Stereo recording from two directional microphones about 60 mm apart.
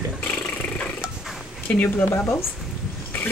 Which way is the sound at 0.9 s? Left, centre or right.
Centre.